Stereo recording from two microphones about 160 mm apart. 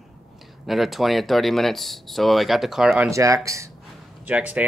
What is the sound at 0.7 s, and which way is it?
Speech, centre (ahead or behind).